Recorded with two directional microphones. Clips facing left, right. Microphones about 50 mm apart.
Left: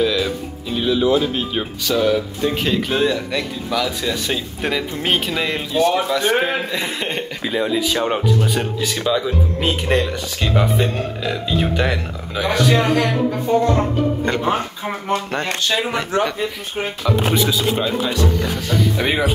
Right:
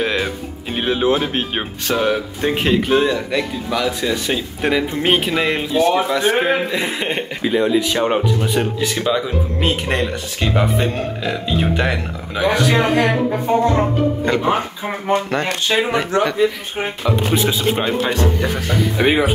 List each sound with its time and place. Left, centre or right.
0.0 s speech: right
2.9 s speech: centre
14.9 s speech: right
18.7 s speech: centre